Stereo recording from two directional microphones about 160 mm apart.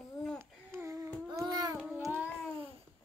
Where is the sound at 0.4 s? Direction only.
15° right (ahead or behind).